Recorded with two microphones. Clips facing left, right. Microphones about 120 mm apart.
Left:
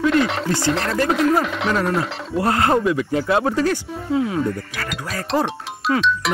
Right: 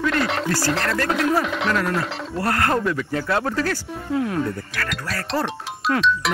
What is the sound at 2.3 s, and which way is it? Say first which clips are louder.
Speech: left 4 dB; 20° left (ahead or behind).